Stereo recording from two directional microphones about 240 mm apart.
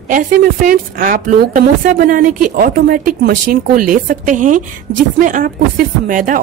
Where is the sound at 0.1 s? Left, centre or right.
Right.